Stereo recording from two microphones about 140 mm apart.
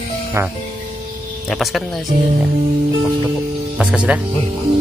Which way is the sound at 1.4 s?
Centre (ahead or behind).